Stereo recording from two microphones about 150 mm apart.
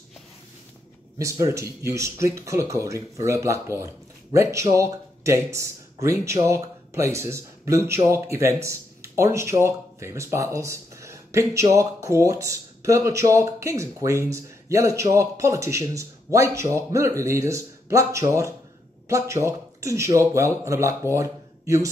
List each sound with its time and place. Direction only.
1.1 s speech: 20° right (ahead or behind)